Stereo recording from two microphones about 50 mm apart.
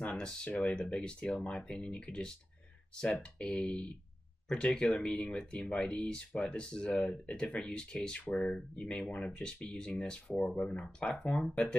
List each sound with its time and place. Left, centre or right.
0.2 s speech: centre